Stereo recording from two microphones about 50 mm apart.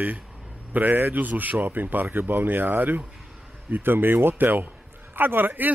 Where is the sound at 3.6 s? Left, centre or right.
Right.